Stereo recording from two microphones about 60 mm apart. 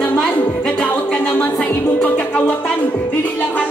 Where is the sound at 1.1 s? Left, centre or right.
Left.